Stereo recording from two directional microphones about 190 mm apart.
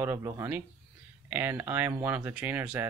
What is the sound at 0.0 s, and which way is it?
Speech, 15° right (ahead or behind).